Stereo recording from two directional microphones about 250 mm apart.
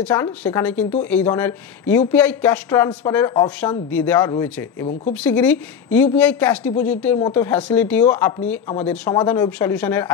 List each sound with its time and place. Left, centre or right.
0.0 s speech: centre